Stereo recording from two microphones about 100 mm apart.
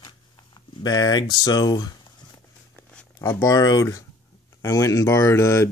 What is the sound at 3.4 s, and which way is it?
Speech, 40° left (ahead or behind).